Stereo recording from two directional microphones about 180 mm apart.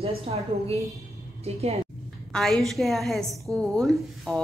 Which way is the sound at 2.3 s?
Centre (ahead or behind).